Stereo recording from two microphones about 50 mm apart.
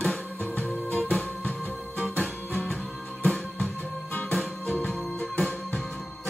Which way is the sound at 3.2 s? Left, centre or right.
Left.